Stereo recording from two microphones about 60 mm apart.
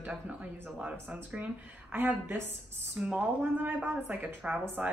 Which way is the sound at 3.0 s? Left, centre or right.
Centre.